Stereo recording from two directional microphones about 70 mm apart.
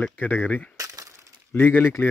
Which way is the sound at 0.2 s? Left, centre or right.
Left.